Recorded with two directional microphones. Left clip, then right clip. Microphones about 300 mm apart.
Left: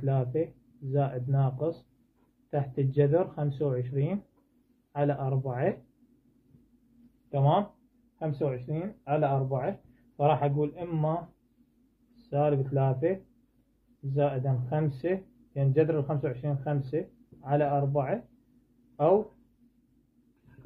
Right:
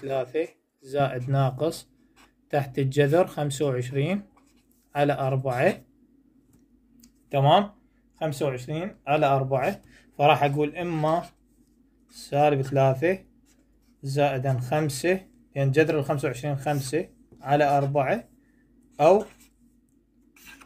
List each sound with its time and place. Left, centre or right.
0.1 s speech: right
7.2 s speech: right
12.3 s speech: right